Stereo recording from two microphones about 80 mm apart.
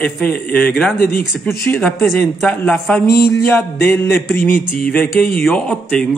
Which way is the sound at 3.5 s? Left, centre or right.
Centre.